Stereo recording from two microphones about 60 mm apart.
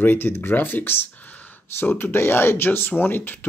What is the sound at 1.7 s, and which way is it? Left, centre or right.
Speech, left.